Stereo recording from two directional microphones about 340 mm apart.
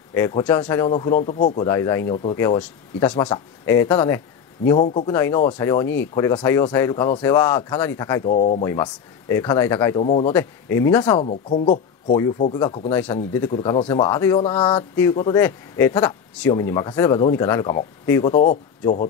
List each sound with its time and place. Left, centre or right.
0.1 s speech: centre
8.6 s speech: centre
10.3 s speech: centre
11.1 s speech: centre
18.3 s speech: left